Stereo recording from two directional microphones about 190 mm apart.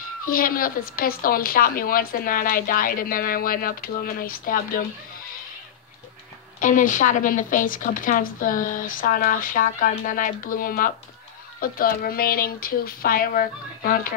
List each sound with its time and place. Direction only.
0.3 s speech: 50° left (ahead or behind)
6.6 s speech: 45° left (ahead or behind)